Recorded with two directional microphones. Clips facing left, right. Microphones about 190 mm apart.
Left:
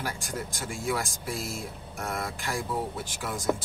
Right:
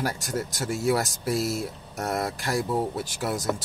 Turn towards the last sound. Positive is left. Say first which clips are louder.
# right 5 dB
turn(degrees=-40)  # may be behind; listen again after turning